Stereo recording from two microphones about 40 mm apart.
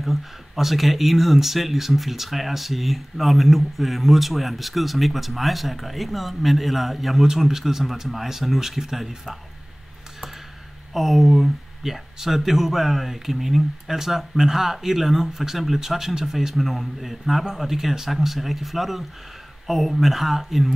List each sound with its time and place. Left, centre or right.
0.0 s speech: centre
10.9 s speech: centre